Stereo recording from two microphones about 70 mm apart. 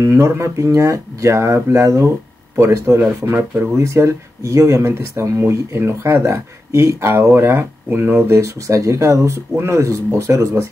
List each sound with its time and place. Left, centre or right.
0.0 s speech: right
3.0 s speech: right
8.4 s speech: right